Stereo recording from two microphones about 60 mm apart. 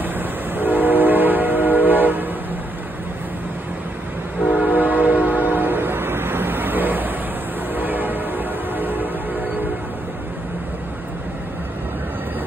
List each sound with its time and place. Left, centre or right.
0.6 s train: right
4.6 s train: right
7.7 s change ringing: right